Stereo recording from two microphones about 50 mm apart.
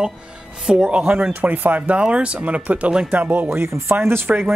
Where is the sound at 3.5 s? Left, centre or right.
Right.